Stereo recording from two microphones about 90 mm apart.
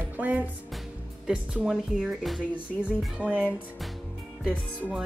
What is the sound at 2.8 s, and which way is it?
Speech, 15° right (ahead or behind).